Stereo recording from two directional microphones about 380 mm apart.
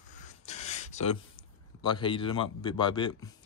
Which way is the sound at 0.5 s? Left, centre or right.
Centre.